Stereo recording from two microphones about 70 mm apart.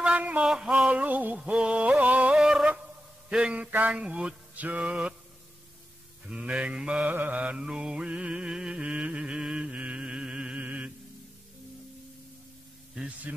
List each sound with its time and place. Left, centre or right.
0.0 s a sound: centre
0.5 s music: centre
0.9 s music: right
2.3 s music: centre
3.3 s mantra: centre
6.2 s mantra: centre